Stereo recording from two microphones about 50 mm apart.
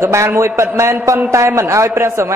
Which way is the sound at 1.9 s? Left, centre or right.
Right.